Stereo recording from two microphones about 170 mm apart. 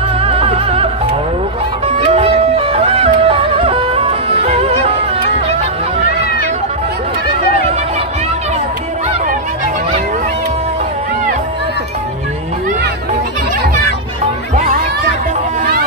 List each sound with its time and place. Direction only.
0.2 s music: 35° right (ahead or behind)
2.0 s music: 35° right (ahead or behind)